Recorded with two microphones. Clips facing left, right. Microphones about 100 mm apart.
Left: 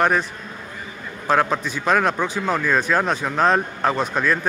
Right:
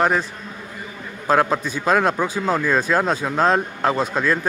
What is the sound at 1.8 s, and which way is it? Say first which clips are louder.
Speech: right 1 dB; 25° right (ahead or behind).